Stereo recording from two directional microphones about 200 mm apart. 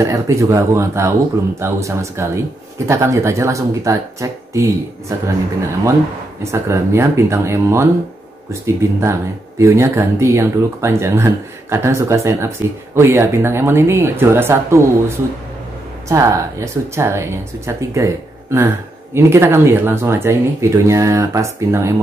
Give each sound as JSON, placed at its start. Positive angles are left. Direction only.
{"t": 0.0, "sound": "speech", "side_deg": -15}
{"t": 6.5, "sound": "speech", "side_deg": -15}